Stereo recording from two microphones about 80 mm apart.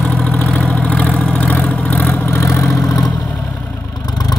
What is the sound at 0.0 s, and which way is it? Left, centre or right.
Vehicle, centre.